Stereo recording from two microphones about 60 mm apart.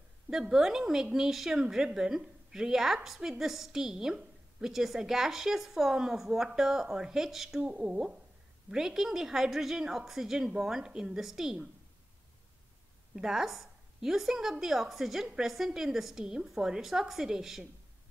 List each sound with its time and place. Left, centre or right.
0.3 s a woman's voice: centre
7.6 s a woman's voice: centre
13.1 s a woman's voice: centre